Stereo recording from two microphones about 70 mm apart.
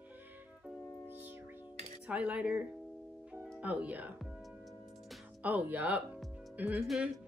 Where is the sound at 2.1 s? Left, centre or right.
Centre.